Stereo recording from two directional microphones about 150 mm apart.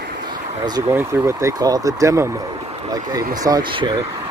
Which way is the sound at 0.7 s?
15° right (ahead or behind).